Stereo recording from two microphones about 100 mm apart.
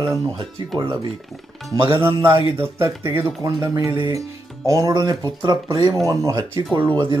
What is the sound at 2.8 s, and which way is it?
Speech, 25° right (ahead or behind).